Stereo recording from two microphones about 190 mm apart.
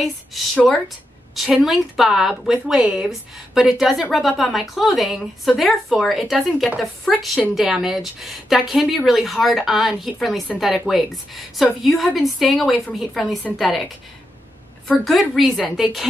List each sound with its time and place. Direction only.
0.0 s speech: centre (ahead or behind)
14.9 s speech: centre (ahead or behind)